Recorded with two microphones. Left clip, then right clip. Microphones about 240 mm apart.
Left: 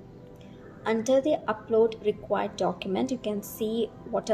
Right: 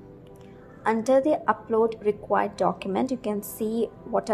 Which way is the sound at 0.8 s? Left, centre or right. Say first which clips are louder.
Right 3 dB; centre.